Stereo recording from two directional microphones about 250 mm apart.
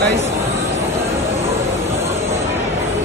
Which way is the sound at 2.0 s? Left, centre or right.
Centre.